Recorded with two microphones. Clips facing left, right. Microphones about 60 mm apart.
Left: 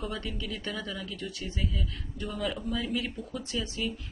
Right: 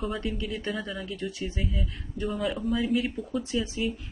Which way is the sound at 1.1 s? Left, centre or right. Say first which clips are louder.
Right 4 dB; right.